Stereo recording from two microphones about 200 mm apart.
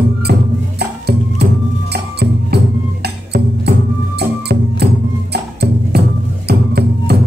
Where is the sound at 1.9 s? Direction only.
55° right (ahead or behind).